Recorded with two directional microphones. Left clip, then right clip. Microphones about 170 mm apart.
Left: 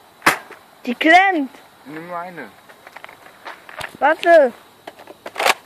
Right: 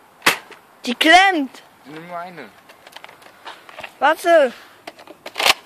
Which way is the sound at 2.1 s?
40° right (ahead or behind).